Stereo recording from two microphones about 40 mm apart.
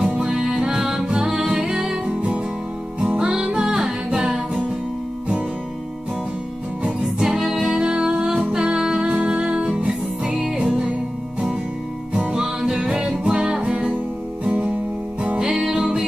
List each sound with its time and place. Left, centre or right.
0.0 s music: right
2.0 s music: right
3.2 s music: centre
7.2 s music: centre
12.1 s music: right